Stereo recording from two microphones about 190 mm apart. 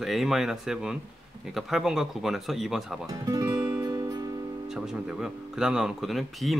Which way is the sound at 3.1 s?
15° right (ahead or behind).